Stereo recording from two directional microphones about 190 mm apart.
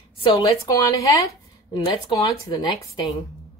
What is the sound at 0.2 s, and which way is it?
Speech, 20° left (ahead or behind).